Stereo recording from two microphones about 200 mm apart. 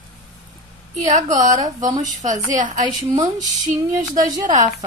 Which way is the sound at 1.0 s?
40° right (ahead or behind).